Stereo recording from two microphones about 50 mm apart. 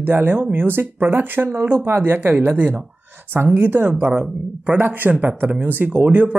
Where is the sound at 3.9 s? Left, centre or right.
Centre.